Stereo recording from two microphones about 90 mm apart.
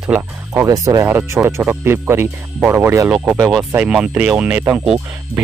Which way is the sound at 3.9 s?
10° right (ahead or behind).